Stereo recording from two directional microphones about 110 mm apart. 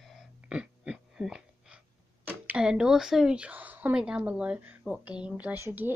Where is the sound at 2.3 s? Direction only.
10° right (ahead or behind).